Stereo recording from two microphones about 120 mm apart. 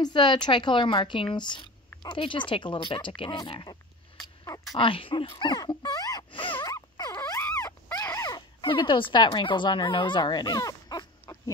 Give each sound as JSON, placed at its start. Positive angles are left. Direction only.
{"t": 0.0, "sound": "a woman's voice", "side_deg": 40}
{"t": 4.7, "sound": "speech", "side_deg": 45}
{"t": 6.3, "sound": "zipper", "side_deg": 45}
{"t": 6.7, "sound": "dog", "side_deg": 25}